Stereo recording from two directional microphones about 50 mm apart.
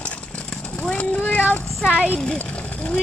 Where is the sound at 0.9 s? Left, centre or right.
Left.